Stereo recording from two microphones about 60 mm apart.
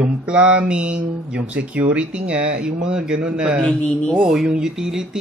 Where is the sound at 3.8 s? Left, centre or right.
Centre.